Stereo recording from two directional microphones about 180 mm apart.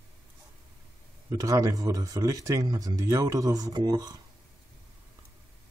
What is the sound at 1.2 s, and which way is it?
Speech, 20° right (ahead or behind).